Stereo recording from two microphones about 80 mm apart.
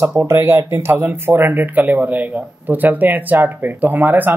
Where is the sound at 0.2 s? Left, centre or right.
Right.